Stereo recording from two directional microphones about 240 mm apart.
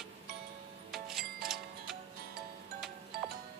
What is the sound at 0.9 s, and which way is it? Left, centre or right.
Music, centre.